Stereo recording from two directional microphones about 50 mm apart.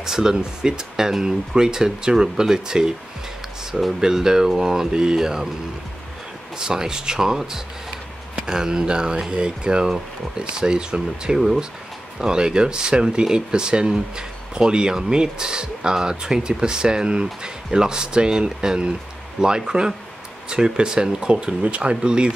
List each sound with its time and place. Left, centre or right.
0.0 s speech: centre
4.0 s speech: centre
6.6 s speech: centre